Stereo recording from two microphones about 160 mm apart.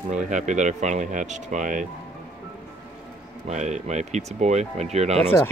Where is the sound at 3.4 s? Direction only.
45° right (ahead or behind).